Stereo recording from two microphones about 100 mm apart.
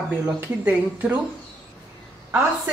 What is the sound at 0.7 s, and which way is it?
Speech, 15° right (ahead or behind).